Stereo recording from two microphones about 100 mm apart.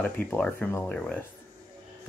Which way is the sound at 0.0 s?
15° left (ahead or behind).